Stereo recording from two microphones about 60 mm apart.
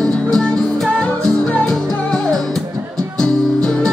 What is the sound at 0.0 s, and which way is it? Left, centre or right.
Music, centre.